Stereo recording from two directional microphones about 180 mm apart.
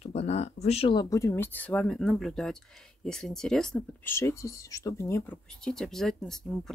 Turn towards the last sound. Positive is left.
turn(degrees=5)  # may be behind; listen again after turning